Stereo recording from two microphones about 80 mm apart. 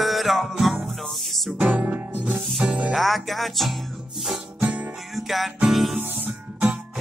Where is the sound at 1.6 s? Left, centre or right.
Centre.